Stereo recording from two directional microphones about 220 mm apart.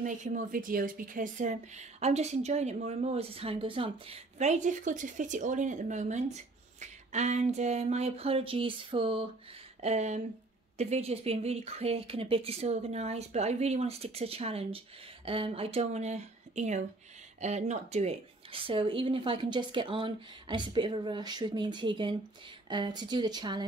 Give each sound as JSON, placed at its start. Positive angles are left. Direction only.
{"t": 0.0, "sound": "a woman's voice", "side_deg": -35}